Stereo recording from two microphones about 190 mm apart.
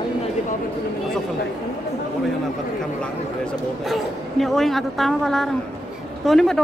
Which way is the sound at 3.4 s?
Centre (ahead or behind).